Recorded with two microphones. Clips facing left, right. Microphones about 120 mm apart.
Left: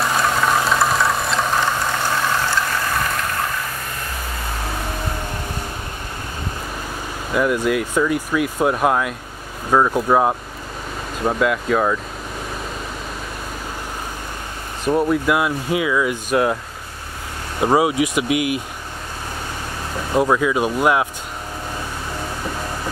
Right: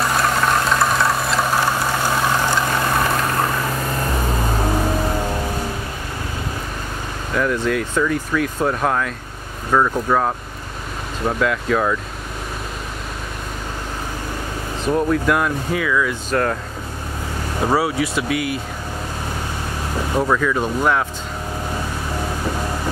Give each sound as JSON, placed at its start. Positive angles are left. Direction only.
{"t": 0.0, "sound": "a sound", "side_deg": 0}
{"t": 7.3, "sound": "speech", "side_deg": 10}
{"t": 11.2, "sound": "speech", "side_deg": 5}
{"t": 14.9, "sound": "speech", "side_deg": 10}
{"t": 17.6, "sound": "speech", "side_deg": 15}
{"t": 20.2, "sound": "speech", "side_deg": 15}